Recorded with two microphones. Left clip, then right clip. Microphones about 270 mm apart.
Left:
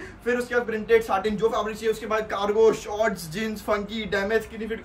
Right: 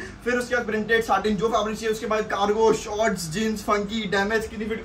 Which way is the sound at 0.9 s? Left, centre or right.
Centre.